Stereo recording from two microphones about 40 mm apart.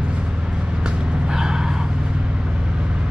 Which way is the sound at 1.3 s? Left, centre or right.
Centre.